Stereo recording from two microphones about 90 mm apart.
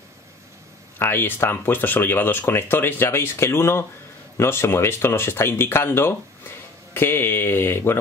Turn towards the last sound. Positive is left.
turn(degrees=25)  # may be behind; listen again after turning